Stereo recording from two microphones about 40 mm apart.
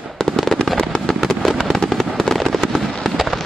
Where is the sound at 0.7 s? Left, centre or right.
Left.